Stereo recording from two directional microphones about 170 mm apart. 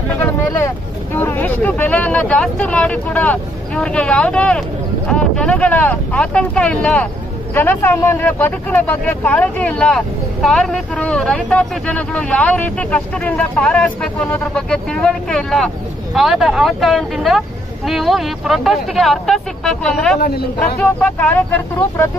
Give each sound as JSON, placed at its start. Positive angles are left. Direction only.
{"t": 0.2, "sound": "speech", "side_deg": 15}
{"t": 20.2, "sound": "speech", "side_deg": 65}
{"t": 20.8, "sound": "speech", "side_deg": 10}